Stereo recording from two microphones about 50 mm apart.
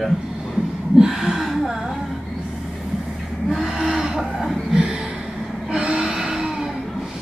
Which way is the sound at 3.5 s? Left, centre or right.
Centre.